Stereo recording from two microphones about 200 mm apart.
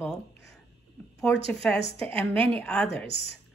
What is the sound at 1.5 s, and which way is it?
A woman's voice, 5° left (ahead or behind).